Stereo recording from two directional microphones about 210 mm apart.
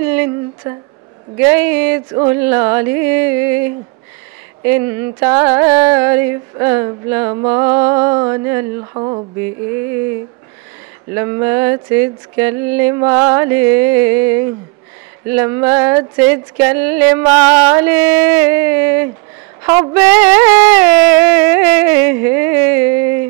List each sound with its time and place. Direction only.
0.1 s speech: 10° right (ahead or behind)
4.6 s speech: 10° right (ahead or behind)
7.4 s a sound: 15° right (ahead or behind)
11.1 s speech: 10° right (ahead or behind)